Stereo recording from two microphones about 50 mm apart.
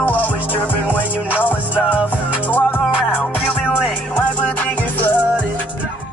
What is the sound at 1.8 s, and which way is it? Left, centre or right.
Music, right.